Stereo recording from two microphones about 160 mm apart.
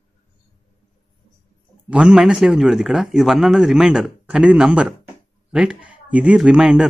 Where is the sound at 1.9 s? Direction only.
5° right (ahead or behind).